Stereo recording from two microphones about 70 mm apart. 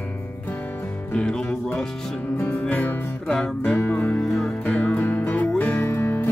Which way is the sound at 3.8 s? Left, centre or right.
Left.